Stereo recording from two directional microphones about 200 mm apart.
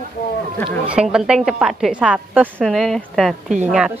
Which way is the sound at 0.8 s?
5° right (ahead or behind).